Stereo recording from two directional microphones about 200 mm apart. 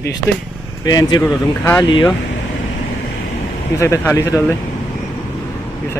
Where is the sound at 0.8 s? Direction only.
20° left (ahead or behind).